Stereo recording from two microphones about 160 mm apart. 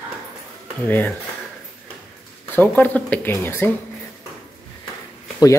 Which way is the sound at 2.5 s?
10° left (ahead or behind).